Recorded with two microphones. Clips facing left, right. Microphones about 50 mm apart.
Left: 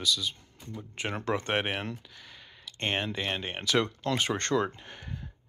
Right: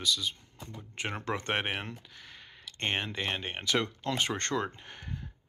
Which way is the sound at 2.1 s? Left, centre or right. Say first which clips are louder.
Even; right.